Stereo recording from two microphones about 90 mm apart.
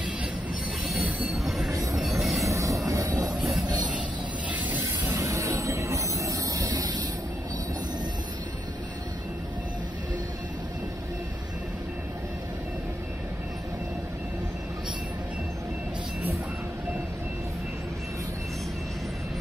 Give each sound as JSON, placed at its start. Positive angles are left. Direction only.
{"t": 0.8, "sound": "train wheels squealing", "side_deg": 0}
{"t": 2.0, "sound": "train", "side_deg": 0}
{"t": 2.5, "sound": "train", "side_deg": -35}
{"t": 4.5, "sound": "train", "side_deg": -20}
{"t": 4.8, "sound": "train", "side_deg": -35}